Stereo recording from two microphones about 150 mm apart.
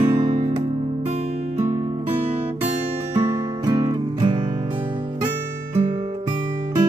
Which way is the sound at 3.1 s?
25° right (ahead or behind).